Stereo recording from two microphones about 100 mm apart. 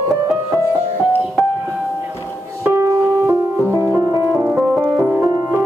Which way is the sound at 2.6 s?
25° right (ahead or behind).